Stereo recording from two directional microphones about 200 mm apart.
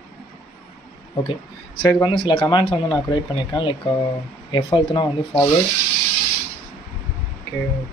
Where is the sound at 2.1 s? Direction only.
25° left (ahead or behind).